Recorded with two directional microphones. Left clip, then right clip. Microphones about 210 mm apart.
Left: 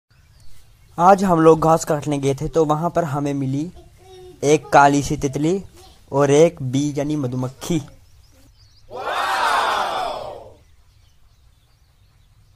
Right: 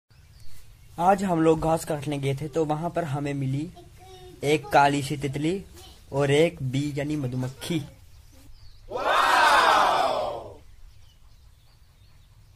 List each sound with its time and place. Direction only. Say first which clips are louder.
0.9 s speech: left 8 dB; 25° left (ahead or behind)
8.9 s crowd: right 1 dB; centre (ahead or behind)